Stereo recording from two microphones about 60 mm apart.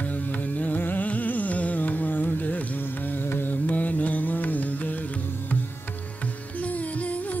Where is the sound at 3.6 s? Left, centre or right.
Left.